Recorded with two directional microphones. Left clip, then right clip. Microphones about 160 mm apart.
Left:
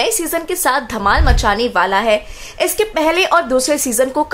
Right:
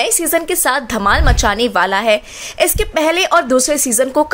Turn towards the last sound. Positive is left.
turn(degrees=-20)  # may be behind; listen again after turning